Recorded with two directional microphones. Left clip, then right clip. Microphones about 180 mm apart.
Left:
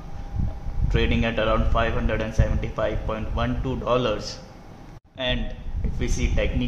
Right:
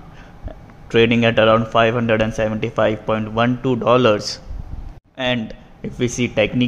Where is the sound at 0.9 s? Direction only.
40° right (ahead or behind).